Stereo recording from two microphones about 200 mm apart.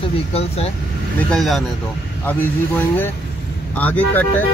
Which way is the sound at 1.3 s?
Centre (ahead or behind).